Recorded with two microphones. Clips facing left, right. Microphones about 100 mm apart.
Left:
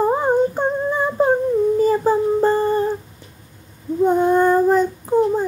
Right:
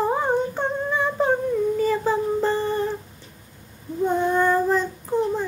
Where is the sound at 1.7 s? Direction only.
35° left (ahead or behind).